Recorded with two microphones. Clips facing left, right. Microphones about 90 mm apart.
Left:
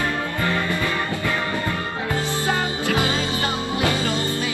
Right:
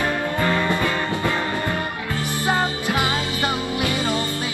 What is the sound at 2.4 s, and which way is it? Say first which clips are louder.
Music: right 4 dB; 20° right (ahead or behind).